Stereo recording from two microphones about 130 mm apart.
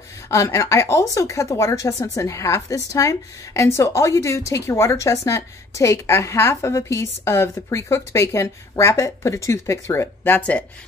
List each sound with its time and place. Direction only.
0.3 s a woman's voice: 25° left (ahead or behind)